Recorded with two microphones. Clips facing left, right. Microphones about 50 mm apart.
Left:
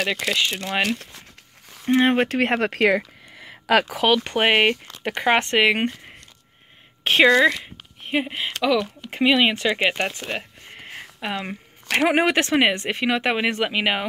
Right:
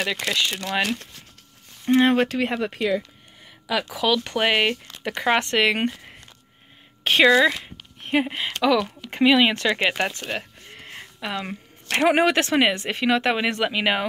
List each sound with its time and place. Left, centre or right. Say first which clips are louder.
0.2 s speech: left 1 dB; centre
1.9 s speech: even; left
2.2 s speech: left 3 dB; left
3.3 s a sound: left 7 dB; left
4.0 s speech: left 2 dB; left
7.1 s speech: left 1 dB; centre
10.7 s a sound: left 3 dB; centre
12.2 s speech: even; left
13.0 s speech: right 1 dB; centre